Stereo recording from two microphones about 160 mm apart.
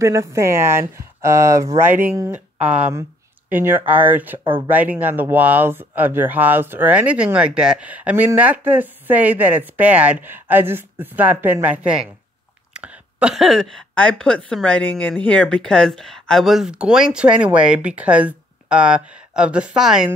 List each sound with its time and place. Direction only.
0.0 s a woman's voice: 20° right (ahead or behind)